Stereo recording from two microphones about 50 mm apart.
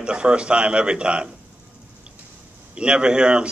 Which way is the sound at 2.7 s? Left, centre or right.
Centre.